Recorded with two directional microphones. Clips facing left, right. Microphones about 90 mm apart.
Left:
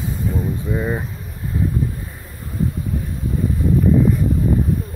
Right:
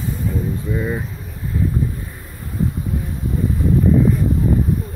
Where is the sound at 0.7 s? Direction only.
20° left (ahead or behind).